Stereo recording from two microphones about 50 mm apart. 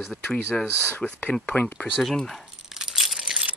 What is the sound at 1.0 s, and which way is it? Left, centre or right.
Speech, centre.